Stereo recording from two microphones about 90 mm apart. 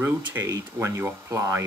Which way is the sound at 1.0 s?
25° right (ahead or behind).